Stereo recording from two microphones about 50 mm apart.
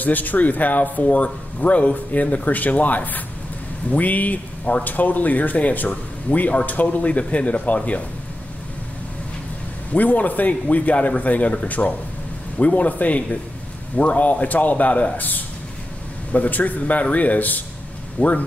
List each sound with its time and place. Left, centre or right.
0.0 s speech: left
9.9 s a man's voice: left